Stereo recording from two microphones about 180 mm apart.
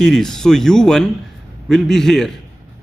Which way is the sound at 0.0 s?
5° left (ahead or behind).